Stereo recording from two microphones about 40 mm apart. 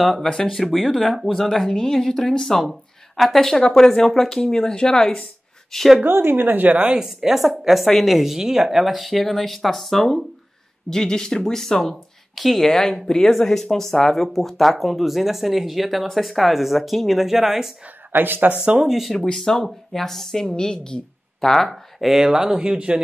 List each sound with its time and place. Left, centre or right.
0.0 s speech: centre
0.3 s speech: centre
2.7 s speech: centre
3.3 s speech: centre
5.7 s speech: centre
6.0 s a woman's voice: right
7.0 s speech: centre
18.1 s a woman's voice: right
18.9 s speech: centre
19.3 s speech: centre
21.6 s speech: centre
22.6 s speech: right